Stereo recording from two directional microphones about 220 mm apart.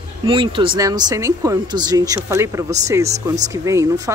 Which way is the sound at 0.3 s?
20° right (ahead or behind).